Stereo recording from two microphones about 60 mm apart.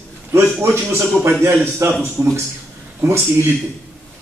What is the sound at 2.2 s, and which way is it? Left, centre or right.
Speech, right.